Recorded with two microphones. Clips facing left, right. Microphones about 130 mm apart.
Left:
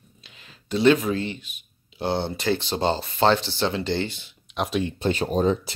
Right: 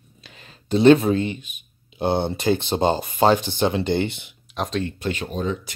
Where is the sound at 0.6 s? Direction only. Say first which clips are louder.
Right 5 dB; 30° right (ahead or behind).